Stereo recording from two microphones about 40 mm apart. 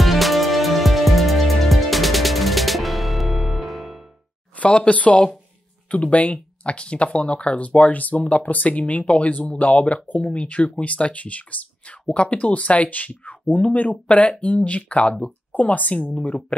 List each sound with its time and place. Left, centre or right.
0.0 s music: centre
4.6 s speech: left
9.0 s speech: left
15.5 s speech: left
16.2 s speech: left